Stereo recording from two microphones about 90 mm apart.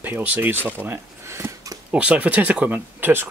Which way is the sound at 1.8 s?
10° right (ahead or behind).